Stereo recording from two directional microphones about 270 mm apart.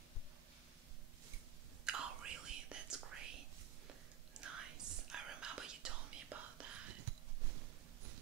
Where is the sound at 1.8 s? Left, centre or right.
Centre.